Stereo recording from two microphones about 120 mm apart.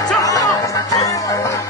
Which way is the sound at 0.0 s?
30° left (ahead or behind).